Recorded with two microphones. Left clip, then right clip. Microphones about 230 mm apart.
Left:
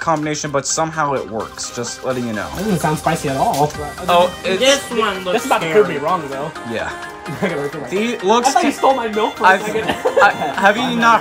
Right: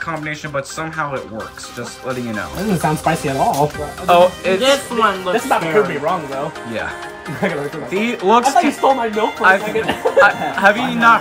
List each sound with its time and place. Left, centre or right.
0.0 s speech: centre
4.6 s speech: centre
5.3 s speech: centre
7.4 s speech: centre